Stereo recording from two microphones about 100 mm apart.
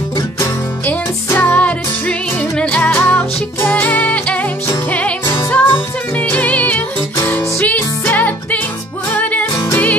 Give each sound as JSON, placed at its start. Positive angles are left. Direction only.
{"t": 0.8, "sound": "music", "side_deg": 20}